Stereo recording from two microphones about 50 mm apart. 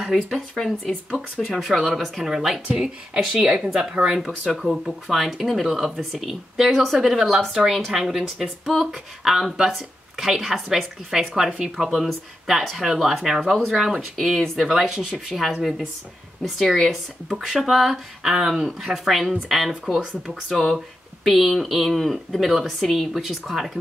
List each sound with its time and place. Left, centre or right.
0.0 s speech: centre
2.7 s speech: centre